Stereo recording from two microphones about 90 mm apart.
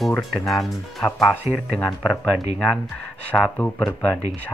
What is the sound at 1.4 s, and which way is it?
Speech, 25° right (ahead or behind).